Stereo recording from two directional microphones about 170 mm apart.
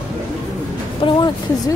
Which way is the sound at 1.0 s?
25° left (ahead or behind).